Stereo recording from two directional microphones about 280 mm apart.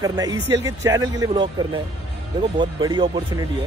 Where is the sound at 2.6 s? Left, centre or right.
Centre.